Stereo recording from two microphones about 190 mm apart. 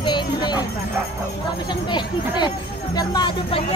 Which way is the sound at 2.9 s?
25° left (ahead or behind).